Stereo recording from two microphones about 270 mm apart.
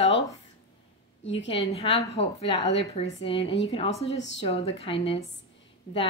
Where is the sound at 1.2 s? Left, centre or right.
Left.